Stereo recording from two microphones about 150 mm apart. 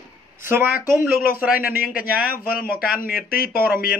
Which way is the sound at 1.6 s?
75° left (ahead or behind).